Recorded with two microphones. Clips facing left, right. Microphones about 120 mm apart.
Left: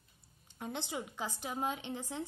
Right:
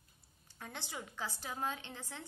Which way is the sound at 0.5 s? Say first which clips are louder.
Left 6 dB; 20° left (ahead or behind).